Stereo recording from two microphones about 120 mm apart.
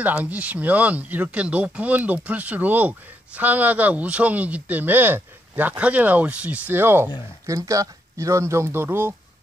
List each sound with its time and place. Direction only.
0.0 s speech: 15° right (ahead or behind)